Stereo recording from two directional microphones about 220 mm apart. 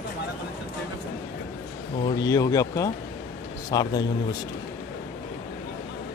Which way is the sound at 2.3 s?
15° left (ahead or behind).